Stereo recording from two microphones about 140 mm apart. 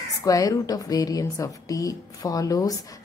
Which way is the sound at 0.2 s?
25° left (ahead or behind).